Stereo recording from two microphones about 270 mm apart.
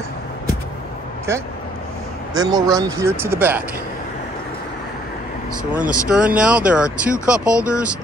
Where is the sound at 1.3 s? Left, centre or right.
Centre.